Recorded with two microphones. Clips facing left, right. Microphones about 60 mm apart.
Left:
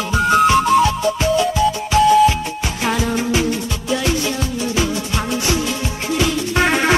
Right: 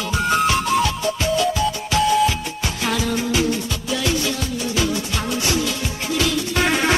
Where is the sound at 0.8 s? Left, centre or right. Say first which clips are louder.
Left 4 dB; left.